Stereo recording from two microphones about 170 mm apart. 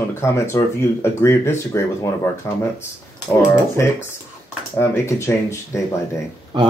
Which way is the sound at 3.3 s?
10° left (ahead or behind).